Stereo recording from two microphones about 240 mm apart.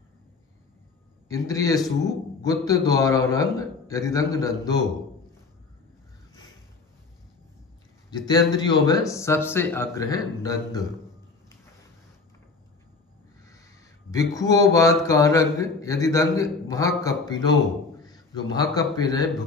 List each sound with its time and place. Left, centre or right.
1.3 s speech: centre
8.3 s speech: centre
14.1 s a man's voice: centre